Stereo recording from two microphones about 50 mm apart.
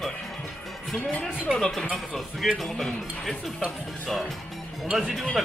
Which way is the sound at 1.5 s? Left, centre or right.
Centre.